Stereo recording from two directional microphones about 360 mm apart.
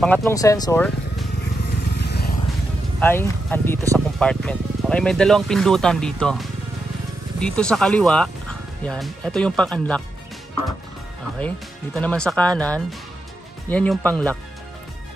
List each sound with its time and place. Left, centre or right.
0.0 s speech: centre
1.9 s vehicle: left
3.0 s speech: centre
11.3 s speech: centre